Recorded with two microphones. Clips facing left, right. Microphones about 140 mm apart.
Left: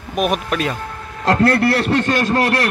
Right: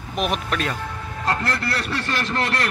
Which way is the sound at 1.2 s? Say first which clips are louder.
Left 10 dB; 75° left (ahead or behind).